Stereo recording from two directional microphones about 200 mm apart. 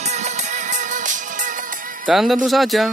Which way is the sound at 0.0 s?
35° right (ahead or behind).